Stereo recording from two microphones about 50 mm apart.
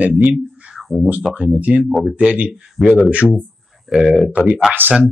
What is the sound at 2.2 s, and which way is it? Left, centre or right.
Speech, right.